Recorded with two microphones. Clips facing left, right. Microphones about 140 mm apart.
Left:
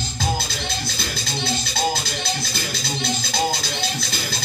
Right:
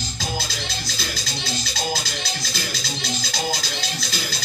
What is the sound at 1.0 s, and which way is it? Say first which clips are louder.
Music: left 3 dB; 55° left (ahead or behind).